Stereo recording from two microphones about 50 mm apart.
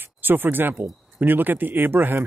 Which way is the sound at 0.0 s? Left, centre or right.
Right.